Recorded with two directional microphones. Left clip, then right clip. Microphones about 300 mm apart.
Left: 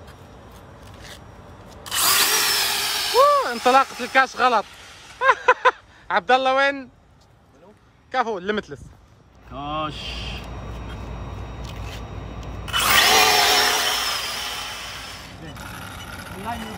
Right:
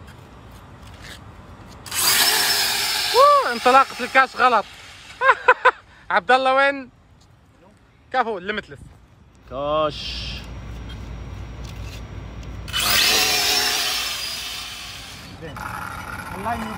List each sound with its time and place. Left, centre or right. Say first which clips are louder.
1.7 s drill: left 2 dB; centre
2.0 s a sound: right 1 dB; centre
8.1 s a man's voice: right 1 dB; centre
9.6 s speech: right 6 dB; left
11.6 s a sound: left 2 dB; centre
12.6 s drill: left 2 dB; left
12.9 s drill: left 3 dB; centre
14.5 s a sound: left 2 dB; left
15.4 s vehicle: right 9 dB; centre